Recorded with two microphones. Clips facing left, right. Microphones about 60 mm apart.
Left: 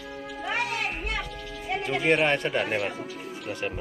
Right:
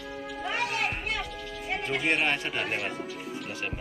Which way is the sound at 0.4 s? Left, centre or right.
Centre.